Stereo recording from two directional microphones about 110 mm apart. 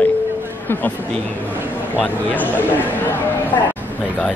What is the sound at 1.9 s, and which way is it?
Mantra, 15° left (ahead or behind).